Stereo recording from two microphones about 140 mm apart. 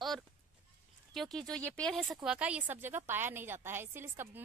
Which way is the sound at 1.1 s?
Centre (ahead or behind).